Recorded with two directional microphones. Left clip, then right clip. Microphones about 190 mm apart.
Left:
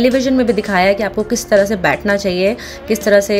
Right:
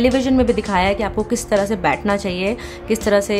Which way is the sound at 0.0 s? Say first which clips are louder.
Left 3 dB; centre (ahead or behind).